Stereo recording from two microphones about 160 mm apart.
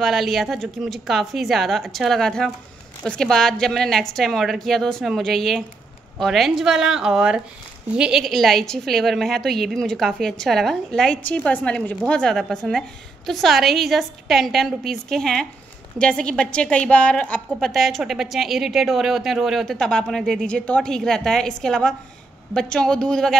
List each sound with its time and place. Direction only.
0.0 s a woman's voice: centre (ahead or behind)